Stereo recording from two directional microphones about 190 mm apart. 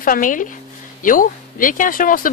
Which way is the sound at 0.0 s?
45° left (ahead or behind).